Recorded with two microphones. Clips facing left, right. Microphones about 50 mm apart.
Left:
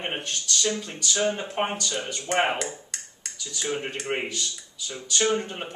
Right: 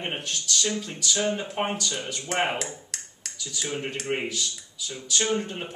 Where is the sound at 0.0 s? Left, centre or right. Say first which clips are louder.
Left 1 dB; centre.